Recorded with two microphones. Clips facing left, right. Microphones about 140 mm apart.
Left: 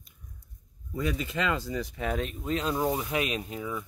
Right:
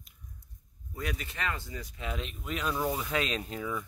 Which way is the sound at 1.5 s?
90° left.